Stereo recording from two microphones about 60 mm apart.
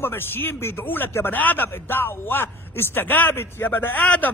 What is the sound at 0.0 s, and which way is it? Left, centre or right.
Speech, left.